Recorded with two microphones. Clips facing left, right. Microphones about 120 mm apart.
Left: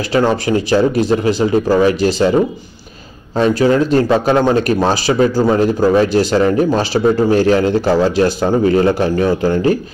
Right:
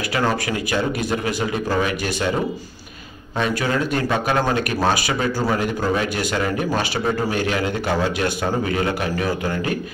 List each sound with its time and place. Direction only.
0.1 s speech: 30° left (ahead or behind)
3.3 s speech: 30° left (ahead or behind)